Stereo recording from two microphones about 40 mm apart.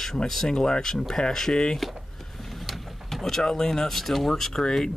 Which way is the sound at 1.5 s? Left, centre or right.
Left.